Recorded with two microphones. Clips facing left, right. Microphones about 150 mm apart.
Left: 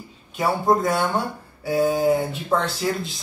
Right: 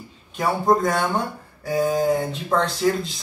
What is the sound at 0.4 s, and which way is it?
Speech, 5° left (ahead or behind).